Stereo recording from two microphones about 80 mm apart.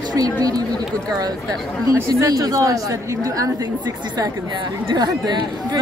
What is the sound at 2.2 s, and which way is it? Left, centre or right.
Speech, right.